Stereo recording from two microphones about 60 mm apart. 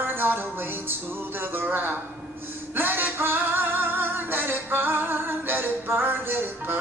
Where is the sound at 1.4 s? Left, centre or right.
Right.